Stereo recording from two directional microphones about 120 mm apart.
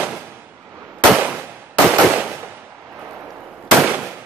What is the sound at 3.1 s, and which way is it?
Gunshot, 5° right (ahead or behind).